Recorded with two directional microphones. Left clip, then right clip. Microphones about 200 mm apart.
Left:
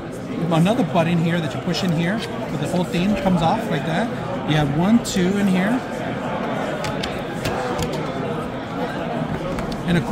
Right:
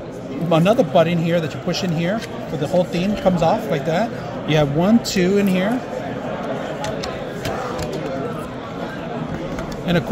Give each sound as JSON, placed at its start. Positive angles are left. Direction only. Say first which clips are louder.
{"t": 0.5, "sound": "speech", "louder": "right 5 dB", "side_deg": -35}